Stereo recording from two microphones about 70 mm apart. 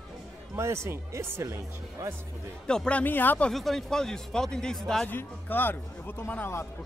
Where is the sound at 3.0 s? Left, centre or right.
Left.